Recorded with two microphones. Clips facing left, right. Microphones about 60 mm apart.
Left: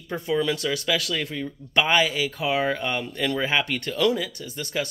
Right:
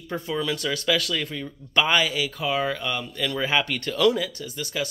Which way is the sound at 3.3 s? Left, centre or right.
Centre.